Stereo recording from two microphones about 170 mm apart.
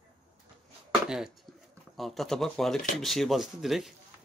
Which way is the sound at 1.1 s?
5° right (ahead or behind).